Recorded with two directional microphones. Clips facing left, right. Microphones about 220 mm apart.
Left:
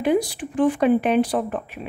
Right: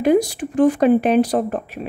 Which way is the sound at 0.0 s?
45° right (ahead or behind).